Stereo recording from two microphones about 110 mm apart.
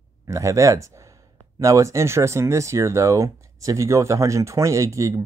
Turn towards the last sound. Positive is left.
turn(degrees=-30)  # may be behind; listen again after turning